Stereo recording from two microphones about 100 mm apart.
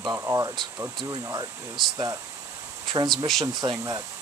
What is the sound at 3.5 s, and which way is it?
Speech, 40° right (ahead or behind).